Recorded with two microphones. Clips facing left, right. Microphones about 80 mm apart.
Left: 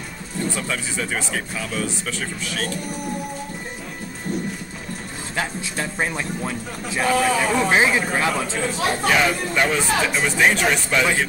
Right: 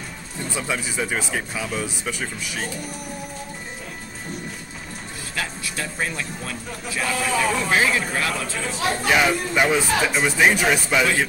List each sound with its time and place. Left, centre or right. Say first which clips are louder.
0.6 s speech: right 1 dB; centre
5.3 s speech: left 3 dB; left
9.1 s speech: right 3 dB; centre